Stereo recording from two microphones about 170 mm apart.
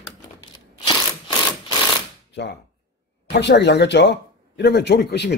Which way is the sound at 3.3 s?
90° left.